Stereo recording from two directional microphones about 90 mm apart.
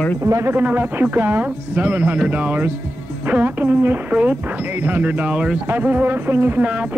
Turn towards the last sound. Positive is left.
turn(degrees=-15)  # may be behind; listen again after turning